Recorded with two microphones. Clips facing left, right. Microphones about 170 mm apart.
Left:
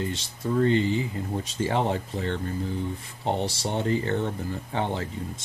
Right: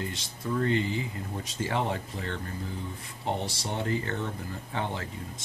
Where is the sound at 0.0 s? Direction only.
25° left (ahead or behind).